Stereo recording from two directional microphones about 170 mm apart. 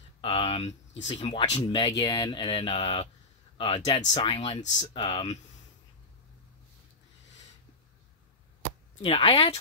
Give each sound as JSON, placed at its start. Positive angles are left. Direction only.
{"t": 0.2, "sound": "speech", "side_deg": 35}
{"t": 9.0, "sound": "speech", "side_deg": 35}